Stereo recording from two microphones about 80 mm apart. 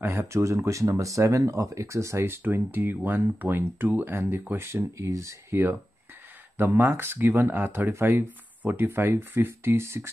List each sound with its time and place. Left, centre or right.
0.0 s speech: right
4.9 s speech: right